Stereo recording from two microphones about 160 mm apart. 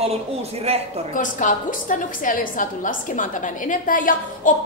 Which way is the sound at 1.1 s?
50° left (ahead or behind).